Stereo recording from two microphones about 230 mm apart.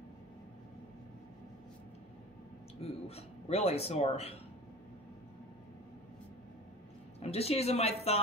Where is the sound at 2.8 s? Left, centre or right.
Left.